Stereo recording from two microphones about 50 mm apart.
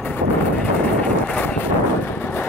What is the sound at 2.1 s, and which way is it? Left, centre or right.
Vehicle, left.